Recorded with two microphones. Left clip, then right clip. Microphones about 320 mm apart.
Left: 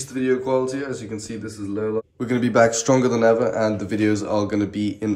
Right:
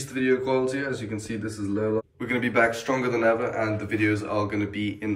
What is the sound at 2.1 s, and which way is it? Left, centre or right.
A man's voice, centre.